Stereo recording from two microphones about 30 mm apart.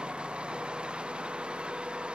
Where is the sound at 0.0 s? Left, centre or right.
Right.